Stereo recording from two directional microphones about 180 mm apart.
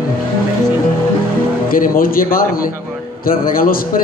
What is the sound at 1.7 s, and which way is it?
A man's voice, 55° left (ahead or behind).